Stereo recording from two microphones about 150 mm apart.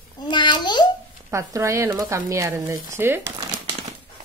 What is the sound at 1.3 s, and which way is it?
Speech, 20° right (ahead or behind).